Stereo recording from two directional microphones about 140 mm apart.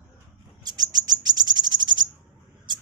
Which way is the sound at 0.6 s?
30° right (ahead or behind).